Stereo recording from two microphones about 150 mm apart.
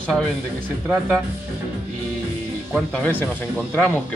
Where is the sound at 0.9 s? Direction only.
5° right (ahead or behind).